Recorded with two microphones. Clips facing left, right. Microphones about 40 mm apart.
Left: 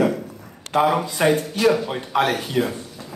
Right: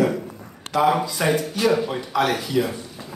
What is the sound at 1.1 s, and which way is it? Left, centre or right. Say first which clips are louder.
A man's voice: left 2 dB; left.